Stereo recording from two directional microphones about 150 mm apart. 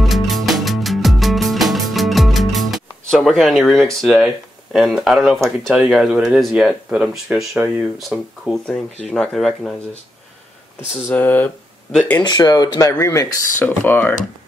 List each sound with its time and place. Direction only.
0.0 s music: centre (ahead or behind)
4.7 s speech: centre (ahead or behind)
11.1 s speech: 10° left (ahead or behind)
12.2 s speech: 25° left (ahead or behind)